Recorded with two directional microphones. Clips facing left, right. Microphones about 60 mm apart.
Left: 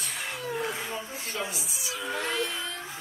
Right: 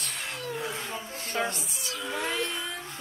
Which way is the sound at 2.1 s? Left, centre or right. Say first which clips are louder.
Even; centre.